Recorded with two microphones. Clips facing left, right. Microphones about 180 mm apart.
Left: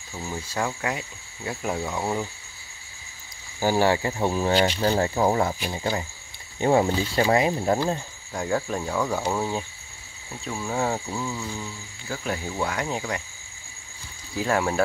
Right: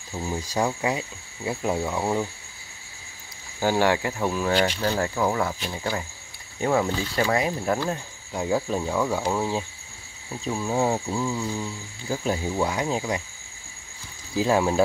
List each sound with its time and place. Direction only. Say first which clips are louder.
0.1 s speech: right 3 dB; 15° right (ahead or behind)
3.5 s speech: even; 15° left (ahead or behind)
8.3 s speech: right 2 dB; 5° right (ahead or behind)
10.5 s speech: right 3 dB; 10° right (ahead or behind)
14.4 s speech: right 3 dB; 15° right (ahead or behind)